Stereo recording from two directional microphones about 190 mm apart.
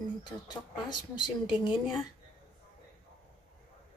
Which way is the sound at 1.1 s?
25° left (ahead or behind).